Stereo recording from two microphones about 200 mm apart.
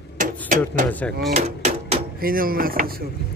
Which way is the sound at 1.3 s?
35° right (ahead or behind).